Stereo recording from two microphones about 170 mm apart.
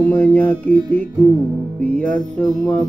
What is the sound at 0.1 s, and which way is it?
Music, 10° left (ahead or behind).